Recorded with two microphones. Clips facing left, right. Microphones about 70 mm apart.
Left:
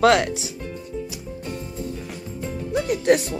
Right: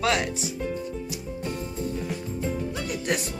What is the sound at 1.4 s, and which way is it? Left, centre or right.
Music, centre.